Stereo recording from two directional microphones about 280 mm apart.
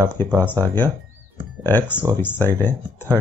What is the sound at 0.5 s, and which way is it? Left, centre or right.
Speech, centre.